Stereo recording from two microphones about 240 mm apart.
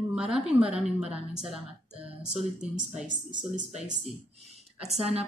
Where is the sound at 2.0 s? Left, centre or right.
Right.